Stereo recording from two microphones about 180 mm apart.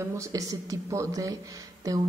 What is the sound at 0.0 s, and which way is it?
Speech, 15° right (ahead or behind).